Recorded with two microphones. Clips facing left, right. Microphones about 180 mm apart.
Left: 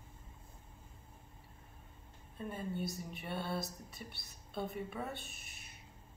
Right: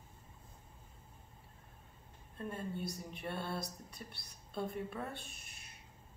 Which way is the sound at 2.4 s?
5° left (ahead or behind).